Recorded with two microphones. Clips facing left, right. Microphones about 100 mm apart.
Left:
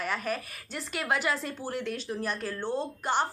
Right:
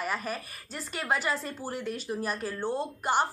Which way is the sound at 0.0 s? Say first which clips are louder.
Left 1 dB; centre (ahead or behind).